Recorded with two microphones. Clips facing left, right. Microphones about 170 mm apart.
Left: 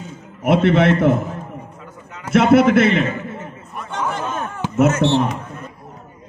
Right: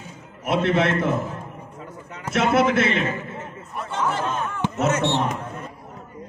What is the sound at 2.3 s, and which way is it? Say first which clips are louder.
Speech: left 7 dB; 55° left (ahead or behind).